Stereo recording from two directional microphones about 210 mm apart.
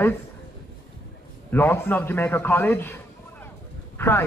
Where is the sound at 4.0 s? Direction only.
10° left (ahead or behind).